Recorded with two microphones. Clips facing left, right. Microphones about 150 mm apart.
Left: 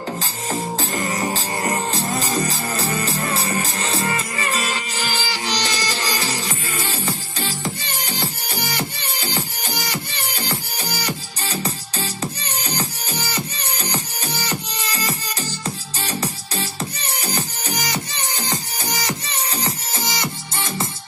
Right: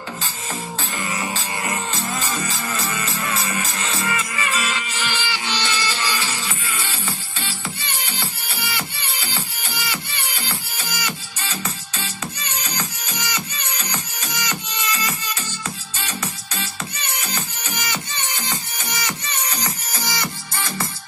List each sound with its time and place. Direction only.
0.5 s music: 40° left (ahead or behind); by 20.9 s 20° left (ahead or behind)